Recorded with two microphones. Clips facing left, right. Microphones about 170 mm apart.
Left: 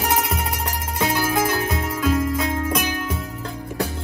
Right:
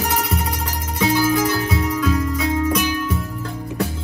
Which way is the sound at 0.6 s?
55° left (ahead or behind).